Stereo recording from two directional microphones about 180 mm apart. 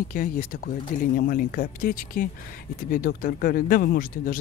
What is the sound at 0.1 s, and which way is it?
Speech, 50° left (ahead or behind).